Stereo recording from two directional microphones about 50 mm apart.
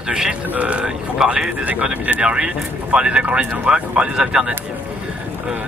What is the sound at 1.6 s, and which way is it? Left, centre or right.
Speech, right.